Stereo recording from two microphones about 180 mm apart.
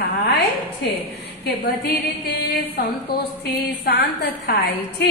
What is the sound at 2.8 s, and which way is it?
A woman's voice, 60° left (ahead or behind).